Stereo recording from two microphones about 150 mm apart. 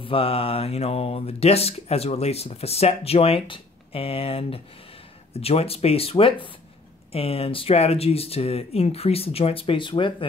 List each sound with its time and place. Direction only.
0.0 s speech: 40° left (ahead or behind)